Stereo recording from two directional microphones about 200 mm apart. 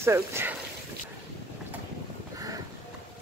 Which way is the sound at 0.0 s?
15° right (ahead or behind).